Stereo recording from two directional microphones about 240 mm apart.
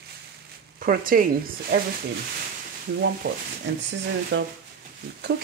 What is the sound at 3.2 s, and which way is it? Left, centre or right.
Speech, right.